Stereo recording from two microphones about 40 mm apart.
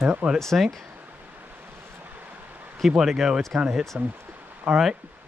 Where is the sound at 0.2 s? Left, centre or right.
Right.